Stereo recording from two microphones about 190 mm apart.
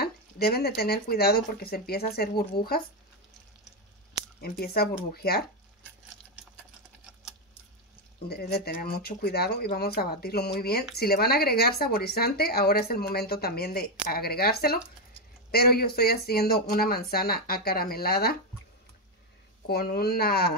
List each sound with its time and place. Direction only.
0.0 s speech: 55° left (ahead or behind)
4.4 s speech: 55° left (ahead or behind)
8.3 s speech: 55° left (ahead or behind)
19.7 s speech: 55° left (ahead or behind)